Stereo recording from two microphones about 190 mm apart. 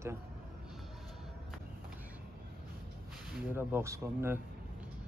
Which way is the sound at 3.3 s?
10° right (ahead or behind).